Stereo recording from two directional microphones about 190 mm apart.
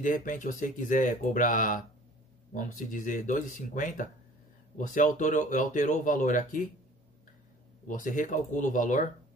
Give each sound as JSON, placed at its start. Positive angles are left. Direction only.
{"t": 0.0, "sound": "speech", "side_deg": 45}
{"t": 7.9, "sound": "speech", "side_deg": 45}